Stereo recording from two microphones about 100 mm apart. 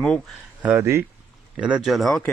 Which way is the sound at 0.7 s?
25° right (ahead or behind).